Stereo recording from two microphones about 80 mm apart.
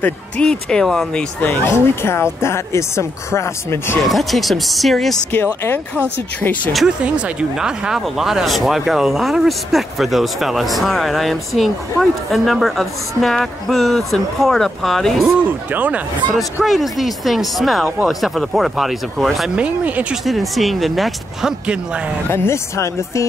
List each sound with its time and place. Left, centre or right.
0.0 s speech: centre
1.4 s speech: left
4.0 s speech: centre
5.3 s speech: left
7.2 s speech: centre
15.7 s speech: centre
16.6 s speech: centre
19.5 s speech: centre
20.2 s speech: centre
22.3 s speech: left